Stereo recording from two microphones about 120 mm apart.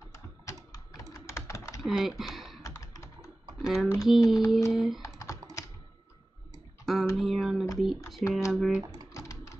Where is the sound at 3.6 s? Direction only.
5° right (ahead or behind).